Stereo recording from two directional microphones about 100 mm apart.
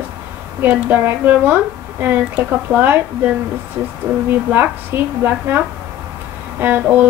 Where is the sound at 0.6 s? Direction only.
15° right (ahead or behind).